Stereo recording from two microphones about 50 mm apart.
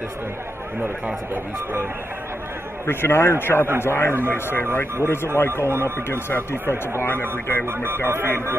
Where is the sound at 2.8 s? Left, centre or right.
Left.